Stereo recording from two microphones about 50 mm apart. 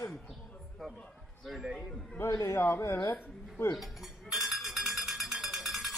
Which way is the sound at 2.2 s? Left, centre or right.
Left.